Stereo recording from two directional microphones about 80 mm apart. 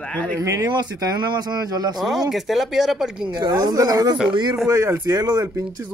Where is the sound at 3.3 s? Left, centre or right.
Right.